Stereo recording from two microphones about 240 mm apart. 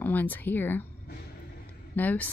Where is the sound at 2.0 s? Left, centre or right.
Centre.